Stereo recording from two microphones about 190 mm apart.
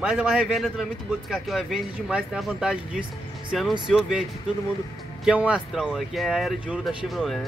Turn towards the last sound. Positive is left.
turn(degrees=0)  # may be behind; listen again after turning